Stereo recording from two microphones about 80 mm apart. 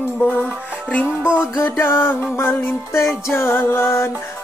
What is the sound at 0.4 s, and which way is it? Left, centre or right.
Music, centre.